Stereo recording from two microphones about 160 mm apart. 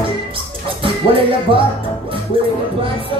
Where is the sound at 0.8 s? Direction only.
35° right (ahead or behind).